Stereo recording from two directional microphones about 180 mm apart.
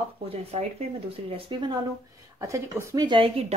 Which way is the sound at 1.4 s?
25° right (ahead or behind).